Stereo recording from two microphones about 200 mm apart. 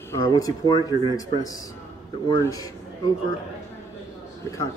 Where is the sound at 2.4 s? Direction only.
20° left (ahead or behind).